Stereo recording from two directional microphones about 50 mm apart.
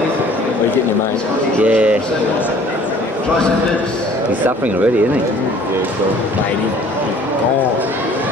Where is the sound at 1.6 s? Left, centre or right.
Right.